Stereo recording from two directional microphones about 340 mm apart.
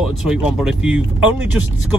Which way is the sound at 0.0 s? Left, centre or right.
Centre.